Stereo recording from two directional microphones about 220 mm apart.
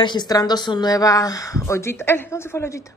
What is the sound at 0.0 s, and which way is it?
Speech, 20° left (ahead or behind).